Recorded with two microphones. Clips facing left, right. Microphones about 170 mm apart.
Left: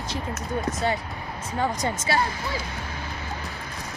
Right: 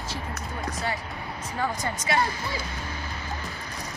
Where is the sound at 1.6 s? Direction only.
30° left (ahead or behind).